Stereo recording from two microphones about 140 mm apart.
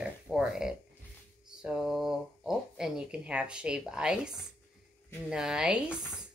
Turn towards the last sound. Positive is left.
turn(degrees=-5)  # may be behind; listen again after turning